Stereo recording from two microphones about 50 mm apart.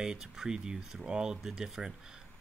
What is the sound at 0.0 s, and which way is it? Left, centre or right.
Speech, centre.